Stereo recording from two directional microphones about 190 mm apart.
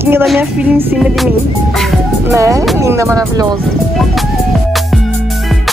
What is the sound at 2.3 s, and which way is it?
Speech, 15° right (ahead or behind).